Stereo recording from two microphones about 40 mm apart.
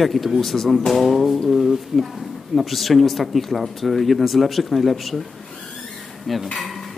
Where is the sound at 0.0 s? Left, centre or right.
Centre.